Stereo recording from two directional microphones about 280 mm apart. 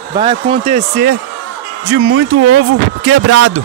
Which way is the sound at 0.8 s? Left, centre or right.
Right.